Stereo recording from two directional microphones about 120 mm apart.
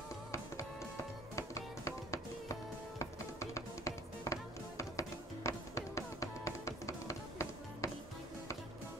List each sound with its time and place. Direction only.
1.3 s music: 25° left (ahead or behind)